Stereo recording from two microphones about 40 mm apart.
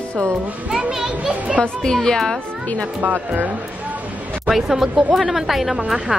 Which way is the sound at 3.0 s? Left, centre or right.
Right.